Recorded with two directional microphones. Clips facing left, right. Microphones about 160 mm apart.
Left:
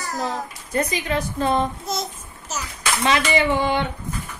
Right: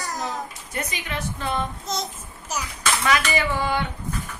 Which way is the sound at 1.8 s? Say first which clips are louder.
Left 2 dB; 5° left (ahead or behind).